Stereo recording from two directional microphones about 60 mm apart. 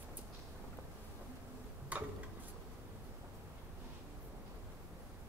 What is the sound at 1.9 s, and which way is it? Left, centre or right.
Tick-tock, right.